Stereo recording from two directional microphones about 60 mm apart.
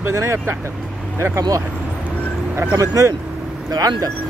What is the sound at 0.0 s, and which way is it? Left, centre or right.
Speech, right.